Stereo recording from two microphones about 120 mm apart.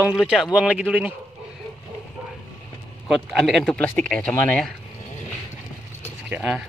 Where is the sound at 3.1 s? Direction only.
Centre (ahead or behind).